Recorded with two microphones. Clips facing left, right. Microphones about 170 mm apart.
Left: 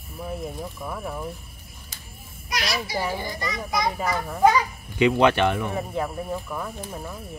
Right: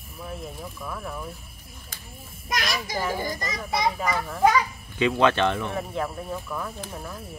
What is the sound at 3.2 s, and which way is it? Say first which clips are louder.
Speech: even; 45° right (ahead or behind).